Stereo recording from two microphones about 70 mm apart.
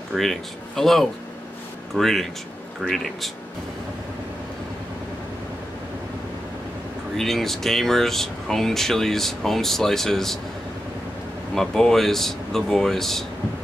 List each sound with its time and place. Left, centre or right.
0.1 s speech: centre
7.2 s speech: centre
11.5 s speech: centre